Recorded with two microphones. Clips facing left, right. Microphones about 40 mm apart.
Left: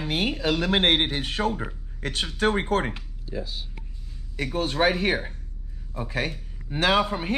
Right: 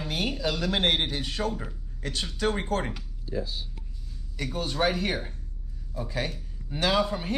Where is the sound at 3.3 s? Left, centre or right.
Left.